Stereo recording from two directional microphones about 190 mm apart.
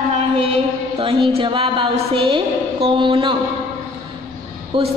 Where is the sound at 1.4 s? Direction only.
25° right (ahead or behind).